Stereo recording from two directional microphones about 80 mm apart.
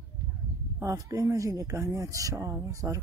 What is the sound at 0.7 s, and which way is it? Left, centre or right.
Speech, right.